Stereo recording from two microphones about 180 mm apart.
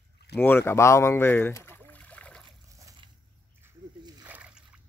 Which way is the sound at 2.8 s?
20° right (ahead or behind).